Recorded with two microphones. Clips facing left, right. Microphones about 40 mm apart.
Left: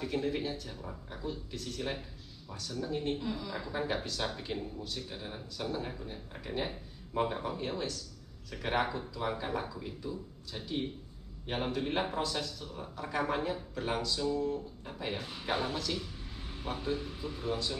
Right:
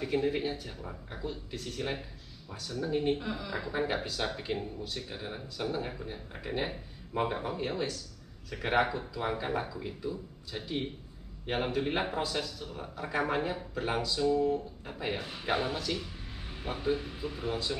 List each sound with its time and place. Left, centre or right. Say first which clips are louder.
0.0 s speech: right 3 dB; centre